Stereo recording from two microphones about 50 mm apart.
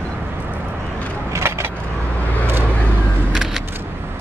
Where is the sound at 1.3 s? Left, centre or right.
Right.